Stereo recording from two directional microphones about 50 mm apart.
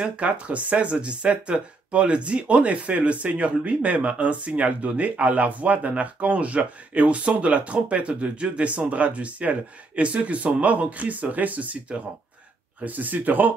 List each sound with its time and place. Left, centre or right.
0.0 s speech: right
12.8 s speech: right